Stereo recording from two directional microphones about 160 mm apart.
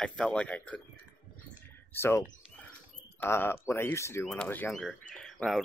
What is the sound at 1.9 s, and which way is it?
Speech, 15° left (ahead or behind).